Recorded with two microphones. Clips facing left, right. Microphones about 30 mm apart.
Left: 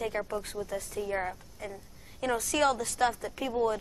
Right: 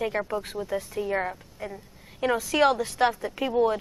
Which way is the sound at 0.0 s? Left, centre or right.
Right.